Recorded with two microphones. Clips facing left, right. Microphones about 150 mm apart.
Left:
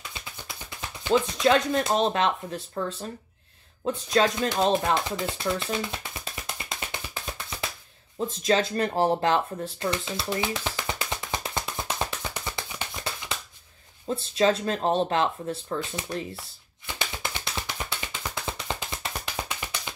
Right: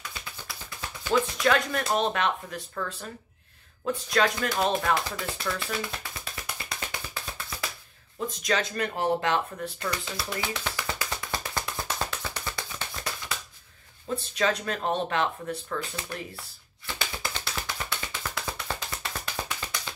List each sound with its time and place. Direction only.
0.2 s speech: 20° left (ahead or behind)
6.4 s music: 25° left (ahead or behind)
8.4 s speech: 30° left (ahead or behind)
9.8 s music: 25° left (ahead or behind)
14.0 s speech: 30° left (ahead or behind)
16.8 s music: 15° left (ahead or behind)